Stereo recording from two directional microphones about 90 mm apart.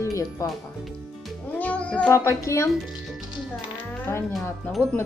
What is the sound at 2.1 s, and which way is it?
Speech, 35° left (ahead or behind).